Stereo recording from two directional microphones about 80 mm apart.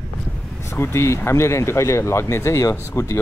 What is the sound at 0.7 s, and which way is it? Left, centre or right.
Speech, left.